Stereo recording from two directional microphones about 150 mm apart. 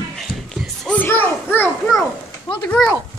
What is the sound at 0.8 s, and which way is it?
Speech, 10° left (ahead or behind).